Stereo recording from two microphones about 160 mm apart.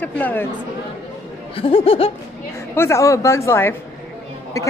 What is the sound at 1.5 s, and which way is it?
Speech, 35° left (ahead or behind).